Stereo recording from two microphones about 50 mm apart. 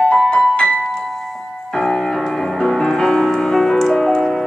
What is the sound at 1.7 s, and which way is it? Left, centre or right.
Music, centre.